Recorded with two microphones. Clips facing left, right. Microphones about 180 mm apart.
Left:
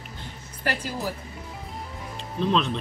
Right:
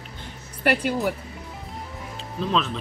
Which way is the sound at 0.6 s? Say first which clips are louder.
Right 7 dB; 70° right (ahead or behind).